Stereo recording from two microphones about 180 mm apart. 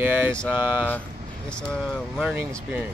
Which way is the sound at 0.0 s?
10° right (ahead or behind).